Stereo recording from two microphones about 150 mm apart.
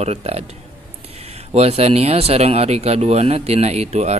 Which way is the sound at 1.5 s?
45° right (ahead or behind).